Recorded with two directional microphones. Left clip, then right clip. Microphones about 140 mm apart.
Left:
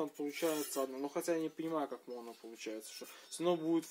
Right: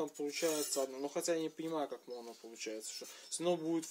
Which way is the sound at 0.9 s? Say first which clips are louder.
Even; 25° left (ahead or behind).